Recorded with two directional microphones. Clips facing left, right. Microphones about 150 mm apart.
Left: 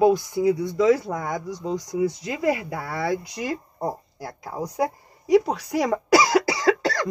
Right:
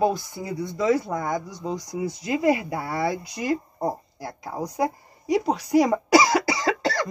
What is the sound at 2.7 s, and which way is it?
Speech, 25° right (ahead or behind).